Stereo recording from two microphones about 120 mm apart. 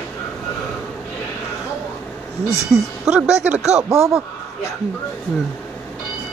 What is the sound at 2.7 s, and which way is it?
Speech, 5° right (ahead or behind).